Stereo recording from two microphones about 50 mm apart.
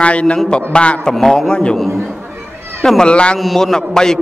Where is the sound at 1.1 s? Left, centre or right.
Centre.